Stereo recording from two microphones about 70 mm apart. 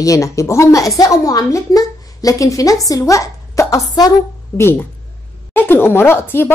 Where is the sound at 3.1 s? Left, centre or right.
Left.